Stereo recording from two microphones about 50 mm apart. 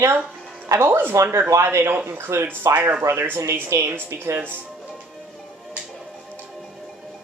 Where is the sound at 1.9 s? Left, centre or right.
Right.